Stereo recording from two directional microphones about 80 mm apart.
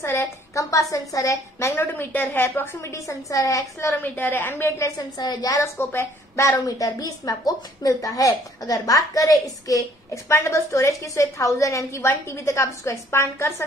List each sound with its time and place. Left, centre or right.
0.0 s a woman's voice: left
4.0 s a woman's voice: left
5.6 s a woman's voice: left
10.2 s a woman's voice: left